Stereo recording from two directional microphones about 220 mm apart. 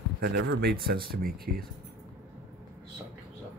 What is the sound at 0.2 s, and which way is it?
Speech, 45° right (ahead or behind).